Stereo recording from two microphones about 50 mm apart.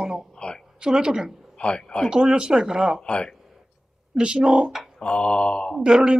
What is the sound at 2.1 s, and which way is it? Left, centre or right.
Speech, centre.